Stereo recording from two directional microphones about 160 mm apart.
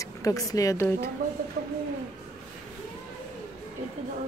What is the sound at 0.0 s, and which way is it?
Speech, 20° left (ahead or behind).